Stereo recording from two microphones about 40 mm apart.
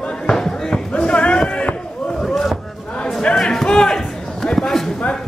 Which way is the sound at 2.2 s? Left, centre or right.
Centre.